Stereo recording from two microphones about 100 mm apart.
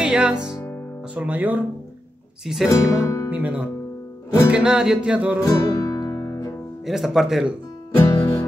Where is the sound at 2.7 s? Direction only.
30° left (ahead or behind).